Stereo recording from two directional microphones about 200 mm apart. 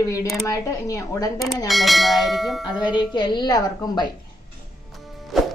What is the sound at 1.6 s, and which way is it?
Bell, centre (ahead or behind).